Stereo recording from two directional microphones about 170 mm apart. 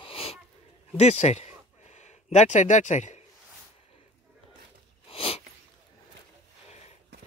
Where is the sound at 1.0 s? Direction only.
40° left (ahead or behind).